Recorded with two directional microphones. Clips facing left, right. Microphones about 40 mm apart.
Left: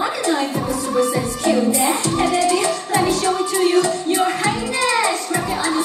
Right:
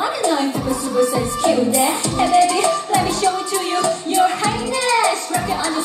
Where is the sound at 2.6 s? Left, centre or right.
Left.